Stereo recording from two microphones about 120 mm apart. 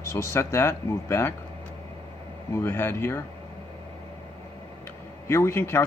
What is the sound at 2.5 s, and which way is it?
Speech, 20° left (ahead or behind).